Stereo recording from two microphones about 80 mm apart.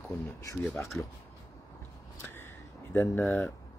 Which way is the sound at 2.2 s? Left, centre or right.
Left.